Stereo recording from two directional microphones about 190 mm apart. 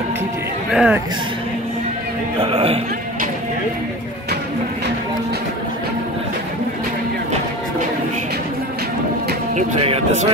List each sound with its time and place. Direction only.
0.7 s speech: 5° right (ahead or behind)
2.4 s music: 30° right (ahead or behind)
9.6 s speech: 35° right (ahead or behind)